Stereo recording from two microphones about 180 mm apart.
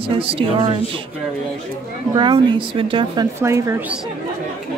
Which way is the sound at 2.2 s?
25° right (ahead or behind).